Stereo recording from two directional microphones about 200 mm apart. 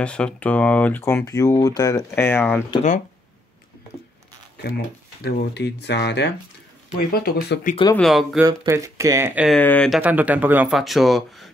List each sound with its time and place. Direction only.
0.0 s speech: 5° left (ahead or behind)
4.6 s speech: 50° left (ahead or behind)
8.0 s speech: centre (ahead or behind)
8.5 s speech: 15° right (ahead or behind)
9.6 s speech: 5° left (ahead or behind)